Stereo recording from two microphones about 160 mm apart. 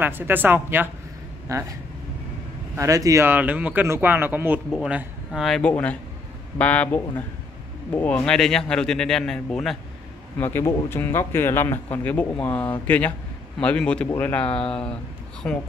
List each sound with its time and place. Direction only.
0.0 s speech: 10° right (ahead or behind)
2.7 s a man's voice: 20° right (ahead or behind); by 9.8 s 5° left (ahead or behind)
10.4 s a man's voice: 15° left (ahead or behind)